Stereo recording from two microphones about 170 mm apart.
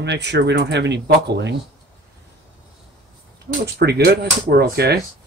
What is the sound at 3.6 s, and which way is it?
Speech, 75° right (ahead or behind).